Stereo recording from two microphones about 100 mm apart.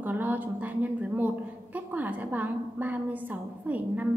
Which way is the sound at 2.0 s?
15° right (ahead or behind).